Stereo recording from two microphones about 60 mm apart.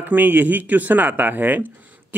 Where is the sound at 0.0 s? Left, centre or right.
Right.